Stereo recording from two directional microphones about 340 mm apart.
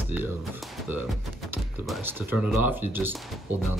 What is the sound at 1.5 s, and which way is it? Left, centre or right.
Speech, centre.